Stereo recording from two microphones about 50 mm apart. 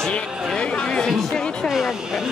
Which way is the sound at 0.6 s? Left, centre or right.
Centre.